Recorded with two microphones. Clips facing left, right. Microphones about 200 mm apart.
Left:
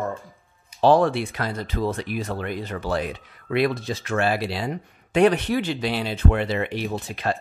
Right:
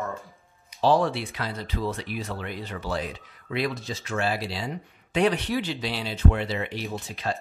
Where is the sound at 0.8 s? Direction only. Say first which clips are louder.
Left 4 dB; 55° left (ahead or behind).